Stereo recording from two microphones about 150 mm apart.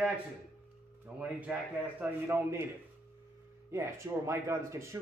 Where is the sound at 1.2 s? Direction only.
10° right (ahead or behind).